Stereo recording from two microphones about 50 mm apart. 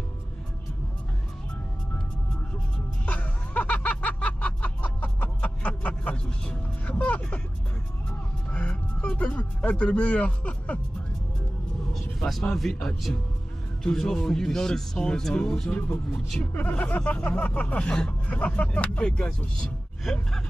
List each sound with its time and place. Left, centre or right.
3.1 s music: left
8.5 s speech: left
11.9 s speech: centre
18.2 s speech: left; by 20.4 s centre